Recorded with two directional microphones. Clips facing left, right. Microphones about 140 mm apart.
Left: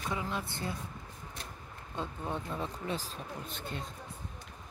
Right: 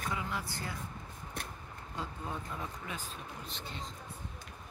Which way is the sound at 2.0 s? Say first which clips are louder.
Left 4 dB; 25° left (ahead or behind).